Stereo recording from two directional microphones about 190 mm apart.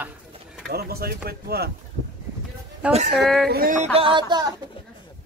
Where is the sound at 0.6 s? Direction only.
55° right (ahead or behind).